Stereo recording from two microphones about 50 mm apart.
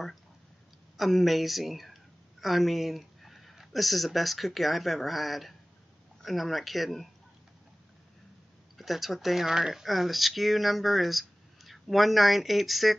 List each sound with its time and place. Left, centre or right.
0.9 s speech: centre
8.7 s speech: centre